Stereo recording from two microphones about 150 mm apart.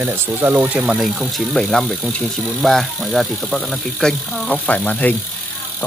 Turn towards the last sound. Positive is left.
turn(degrees=10)  # may be behind; listen again after turning